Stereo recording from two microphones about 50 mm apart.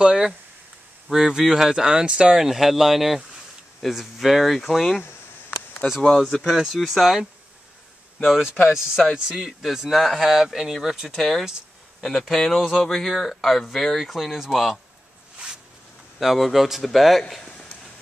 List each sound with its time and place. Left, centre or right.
0.0 s speech: centre
6.0 s speech: centre
8.3 s speech: centre
11.1 s speech: centre
15.3 s zipper: centre
16.2 s speech: centre
17.2 s a sound: centre